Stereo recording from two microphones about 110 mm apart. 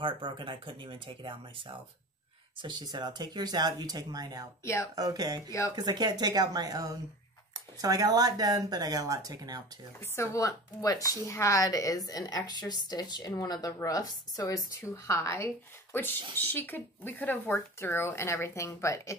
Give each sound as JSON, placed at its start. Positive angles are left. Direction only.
{"t": 0.0, "sound": "speech", "side_deg": -50}
{"t": 2.6, "sound": "speech", "side_deg": -40}
{"t": 10.1, "sound": "speech", "side_deg": 25}